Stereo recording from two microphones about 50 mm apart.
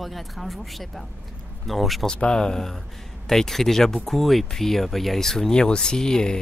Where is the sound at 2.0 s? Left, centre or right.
Centre.